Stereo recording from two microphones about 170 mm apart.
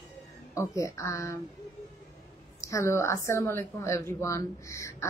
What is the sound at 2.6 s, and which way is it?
A woman's voice, 15° left (ahead or behind).